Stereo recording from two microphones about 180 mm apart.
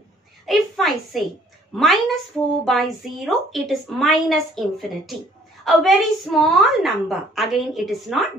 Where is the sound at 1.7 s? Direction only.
Centre (ahead or behind).